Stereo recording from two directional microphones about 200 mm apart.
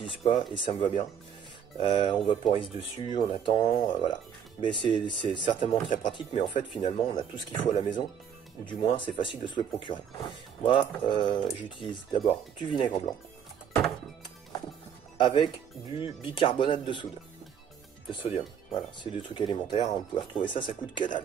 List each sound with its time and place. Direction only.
0.0 s speech: 25° left (ahead or behind)
11.1 s speech: 40° left (ahead or behind)
11.8 s speech: 25° left (ahead or behind)
15.1 s speech: 25° left (ahead or behind)
18.2 s speech: 25° left (ahead or behind)